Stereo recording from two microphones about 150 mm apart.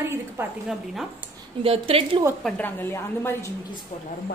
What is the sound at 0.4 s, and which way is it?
Speech, 15° right (ahead or behind).